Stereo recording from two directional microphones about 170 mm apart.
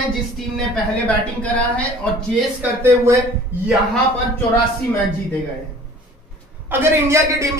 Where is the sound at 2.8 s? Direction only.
15° right (ahead or behind).